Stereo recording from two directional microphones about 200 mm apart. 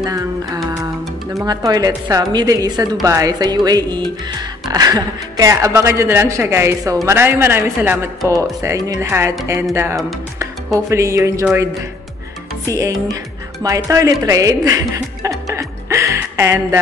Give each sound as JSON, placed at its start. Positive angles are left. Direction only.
{"t": 0.0, "sound": "music", "side_deg": -20}
{"t": 1.4, "sound": "a woman's voice", "side_deg": -20}
{"t": 12.6, "sound": "speech", "side_deg": -15}
{"t": 14.2, "sound": "music", "side_deg": -15}